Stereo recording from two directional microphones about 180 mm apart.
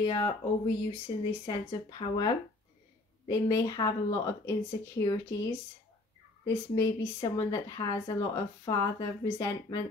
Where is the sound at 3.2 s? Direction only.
20° left (ahead or behind).